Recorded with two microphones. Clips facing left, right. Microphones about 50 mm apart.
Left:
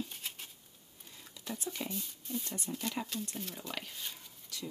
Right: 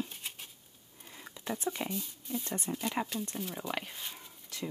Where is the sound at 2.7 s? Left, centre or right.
Right.